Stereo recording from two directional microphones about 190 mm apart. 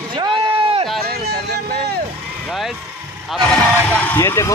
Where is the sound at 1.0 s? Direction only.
60° right (ahead or behind).